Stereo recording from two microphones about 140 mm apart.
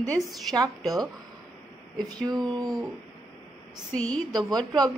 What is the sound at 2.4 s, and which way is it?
Speech, 30° right (ahead or behind).